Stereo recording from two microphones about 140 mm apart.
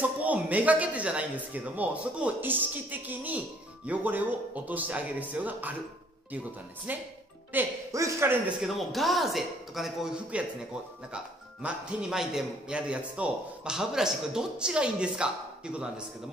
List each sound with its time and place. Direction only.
0.2 s speech: 10° right (ahead or behind)
6.9 s speech: 10° right (ahead or behind)
8.6 s a man's voice: centre (ahead or behind)